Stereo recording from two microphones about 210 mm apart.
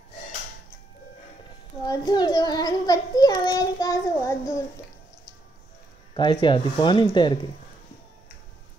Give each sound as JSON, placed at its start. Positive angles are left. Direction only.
{"t": 1.9, "sound": "a child's voice", "side_deg": 20}
{"t": 6.1, "sound": "speech", "side_deg": 20}